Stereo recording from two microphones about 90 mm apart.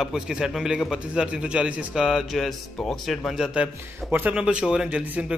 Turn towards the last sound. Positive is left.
turn(degrees=-15)  # may be behind; listen again after turning